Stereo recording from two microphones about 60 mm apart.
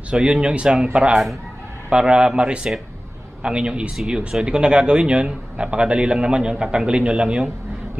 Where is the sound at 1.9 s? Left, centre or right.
Centre.